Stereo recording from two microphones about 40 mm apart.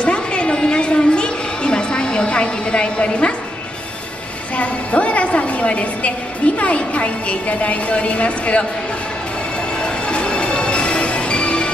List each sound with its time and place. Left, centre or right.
0.0 s a sound: left
4.6 s a woman's voice: left
9.8 s music: left